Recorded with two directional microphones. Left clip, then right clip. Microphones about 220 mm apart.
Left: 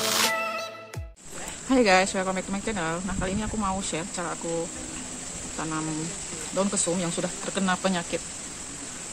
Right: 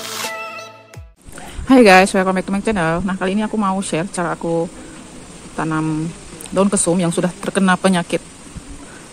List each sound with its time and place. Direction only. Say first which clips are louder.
0.0 s music: left 1 dB; centre (ahead or behind)
1.7 s speech: right 11 dB; 40° right (ahead or behind)
5.6 s speech: right 11 dB; 40° right (ahead or behind)